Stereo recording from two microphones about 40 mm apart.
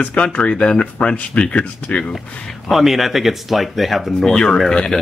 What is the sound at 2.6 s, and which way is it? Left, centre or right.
Speech, centre.